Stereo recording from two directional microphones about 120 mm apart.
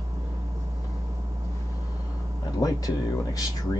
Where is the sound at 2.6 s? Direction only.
30° left (ahead or behind).